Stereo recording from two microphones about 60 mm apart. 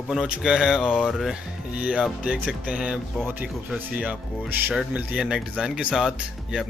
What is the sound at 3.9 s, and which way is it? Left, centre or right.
Speech, right.